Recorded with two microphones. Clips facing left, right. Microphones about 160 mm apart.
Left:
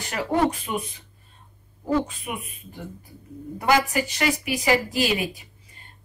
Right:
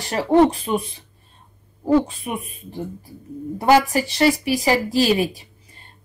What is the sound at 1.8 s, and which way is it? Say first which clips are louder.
Speech: right 6 dB; 30° right (ahead or behind).